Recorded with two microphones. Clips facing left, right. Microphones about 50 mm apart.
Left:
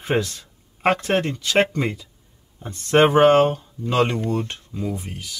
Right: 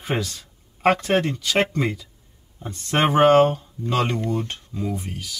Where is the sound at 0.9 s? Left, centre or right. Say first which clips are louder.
Right 1 dB; centre.